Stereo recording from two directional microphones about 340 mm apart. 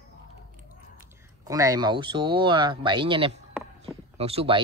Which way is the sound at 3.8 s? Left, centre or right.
Centre.